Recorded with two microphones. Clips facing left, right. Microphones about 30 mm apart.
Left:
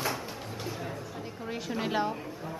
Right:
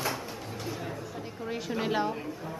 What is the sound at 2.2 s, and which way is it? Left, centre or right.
Music, centre.